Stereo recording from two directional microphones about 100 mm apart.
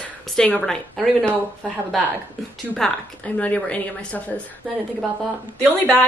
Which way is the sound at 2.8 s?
5° left (ahead or behind).